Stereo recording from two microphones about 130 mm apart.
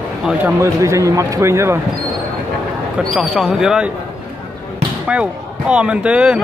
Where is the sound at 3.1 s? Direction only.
Centre (ahead or behind).